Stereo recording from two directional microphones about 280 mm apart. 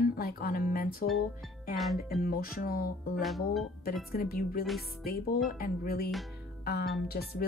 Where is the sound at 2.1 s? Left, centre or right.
Left.